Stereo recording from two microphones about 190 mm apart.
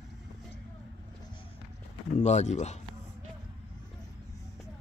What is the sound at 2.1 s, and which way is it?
Speech, 35° left (ahead or behind).